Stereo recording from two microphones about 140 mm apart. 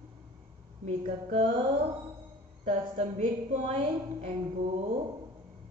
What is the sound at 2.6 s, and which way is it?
A woman's voice, 55° right (ahead or behind).